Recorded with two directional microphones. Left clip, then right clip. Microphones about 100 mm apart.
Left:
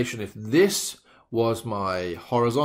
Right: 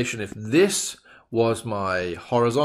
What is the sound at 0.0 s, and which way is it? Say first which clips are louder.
Speech: right 2 dB; 20° right (ahead or behind).